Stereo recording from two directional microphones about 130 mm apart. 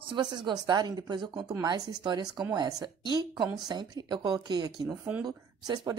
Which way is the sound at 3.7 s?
35° right (ahead or behind).